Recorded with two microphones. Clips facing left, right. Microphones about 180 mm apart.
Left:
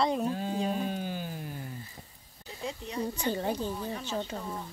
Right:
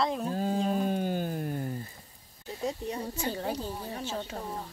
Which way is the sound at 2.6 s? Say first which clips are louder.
Right 5 dB; 40° right (ahead or behind).